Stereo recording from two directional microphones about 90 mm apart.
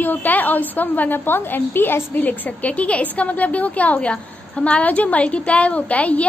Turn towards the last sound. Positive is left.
turn(degrees=15)  # may be behind; listen again after turning